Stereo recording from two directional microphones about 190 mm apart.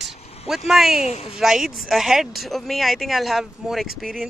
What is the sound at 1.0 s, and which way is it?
Speech, 35° left (ahead or behind).